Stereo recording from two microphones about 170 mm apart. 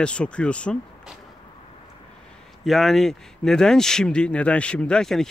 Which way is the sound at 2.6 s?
Centre (ahead or behind).